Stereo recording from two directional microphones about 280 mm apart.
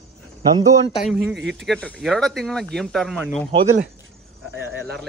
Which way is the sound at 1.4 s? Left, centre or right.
Right.